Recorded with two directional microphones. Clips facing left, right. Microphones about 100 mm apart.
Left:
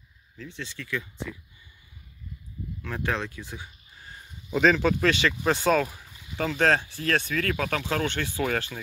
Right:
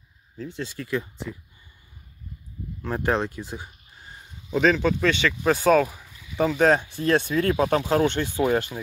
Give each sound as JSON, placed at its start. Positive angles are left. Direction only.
{"t": 0.4, "sound": "speech", "side_deg": -40}
{"t": 2.8, "sound": "speech", "side_deg": -35}
{"t": 4.5, "sound": "speech", "side_deg": 0}